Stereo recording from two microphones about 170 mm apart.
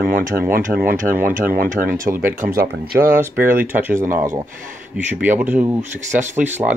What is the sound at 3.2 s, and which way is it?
Speech, 15° right (ahead or behind).